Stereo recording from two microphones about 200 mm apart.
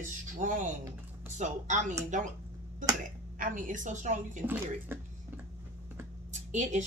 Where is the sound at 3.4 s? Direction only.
40° right (ahead or behind).